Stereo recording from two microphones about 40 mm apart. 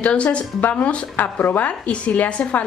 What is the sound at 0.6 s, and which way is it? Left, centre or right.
Speech, left.